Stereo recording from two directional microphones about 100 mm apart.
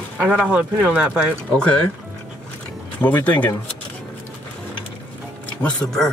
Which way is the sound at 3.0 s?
20° left (ahead or behind).